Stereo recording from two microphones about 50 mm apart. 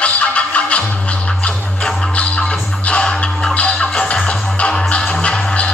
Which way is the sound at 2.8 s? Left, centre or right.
Left.